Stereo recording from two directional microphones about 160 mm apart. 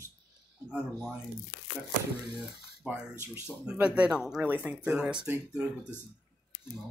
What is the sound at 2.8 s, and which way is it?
Speech, 15° right (ahead or behind).